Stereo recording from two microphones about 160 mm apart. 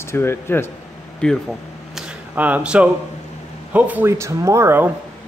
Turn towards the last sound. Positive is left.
turn(degrees=-15)  # may be behind; listen again after turning